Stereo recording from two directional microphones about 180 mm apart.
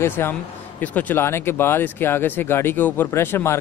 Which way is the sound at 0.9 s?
10° left (ahead or behind).